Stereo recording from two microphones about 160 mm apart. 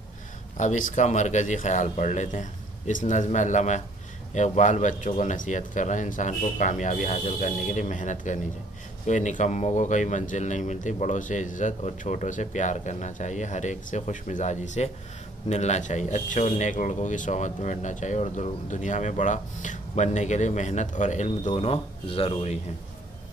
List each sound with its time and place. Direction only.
0.6 s speech: 50° left (ahead or behind)